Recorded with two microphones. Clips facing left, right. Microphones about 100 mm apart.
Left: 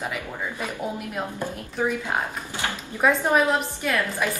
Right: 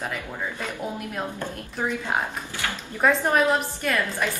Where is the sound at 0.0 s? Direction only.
10° left (ahead or behind).